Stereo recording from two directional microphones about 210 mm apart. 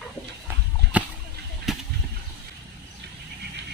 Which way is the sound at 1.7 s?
Centre (ahead or behind).